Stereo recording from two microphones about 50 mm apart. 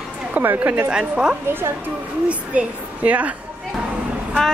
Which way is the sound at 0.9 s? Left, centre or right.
Centre.